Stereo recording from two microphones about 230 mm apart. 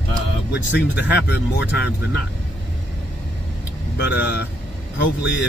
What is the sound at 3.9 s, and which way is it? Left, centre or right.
Speech, left.